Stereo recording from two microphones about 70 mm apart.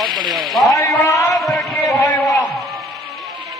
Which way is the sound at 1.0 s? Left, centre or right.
Left.